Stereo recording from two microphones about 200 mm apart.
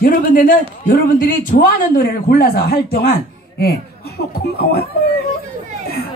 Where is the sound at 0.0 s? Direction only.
45° left (ahead or behind).